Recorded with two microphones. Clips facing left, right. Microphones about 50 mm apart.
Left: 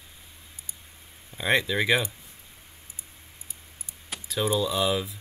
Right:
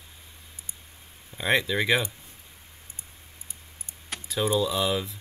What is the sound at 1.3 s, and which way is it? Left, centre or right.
Speech, centre.